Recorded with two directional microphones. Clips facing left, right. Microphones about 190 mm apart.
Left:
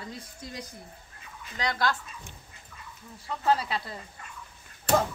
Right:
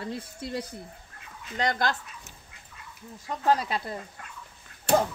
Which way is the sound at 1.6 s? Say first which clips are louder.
Right 2 dB; 50° right (ahead or behind).